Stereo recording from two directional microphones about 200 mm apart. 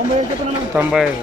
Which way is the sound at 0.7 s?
10° right (ahead or behind).